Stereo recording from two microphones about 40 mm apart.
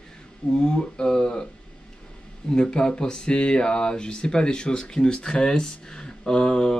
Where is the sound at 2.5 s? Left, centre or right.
Left.